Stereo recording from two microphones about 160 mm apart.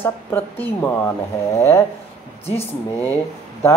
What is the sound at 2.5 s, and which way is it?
Speech, 15° left (ahead or behind).